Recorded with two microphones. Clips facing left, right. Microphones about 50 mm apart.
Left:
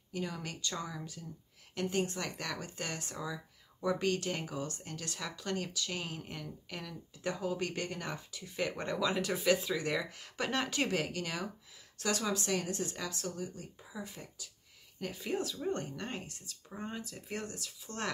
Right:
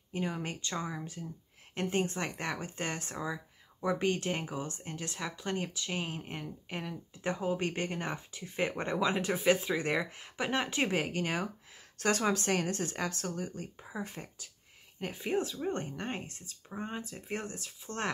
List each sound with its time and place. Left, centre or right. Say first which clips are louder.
0.1 s speech: right 4 dB; right
10.3 s speech: right 2 dB; centre